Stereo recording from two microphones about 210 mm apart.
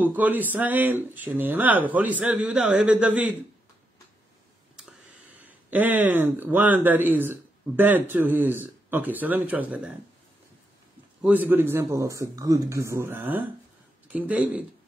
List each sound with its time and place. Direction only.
0.0 s speech: 10° right (ahead or behind)
4.7 s speech: 5° right (ahead or behind)
11.2 s speech: 10° right (ahead or behind)